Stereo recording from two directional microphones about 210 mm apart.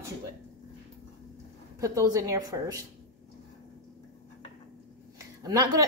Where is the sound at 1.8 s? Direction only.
15° right (ahead or behind).